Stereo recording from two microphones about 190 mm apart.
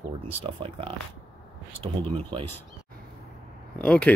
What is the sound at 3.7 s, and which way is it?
Speech, 5° left (ahead or behind).